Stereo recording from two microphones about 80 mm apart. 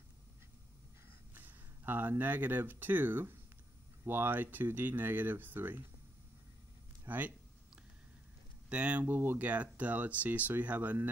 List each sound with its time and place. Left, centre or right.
1.3 s speech: right
7.1 s speech: right
8.6 s speech: centre